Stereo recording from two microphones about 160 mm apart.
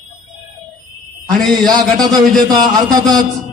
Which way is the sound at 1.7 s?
25° right (ahead or behind).